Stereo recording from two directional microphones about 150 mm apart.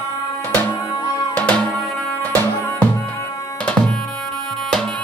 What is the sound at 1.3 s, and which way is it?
Music, 10° left (ahead or behind).